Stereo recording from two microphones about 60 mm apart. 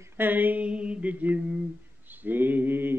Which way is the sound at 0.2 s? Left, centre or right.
Right.